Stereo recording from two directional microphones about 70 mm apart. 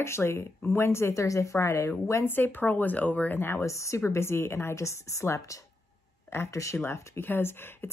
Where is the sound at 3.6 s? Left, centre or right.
Left.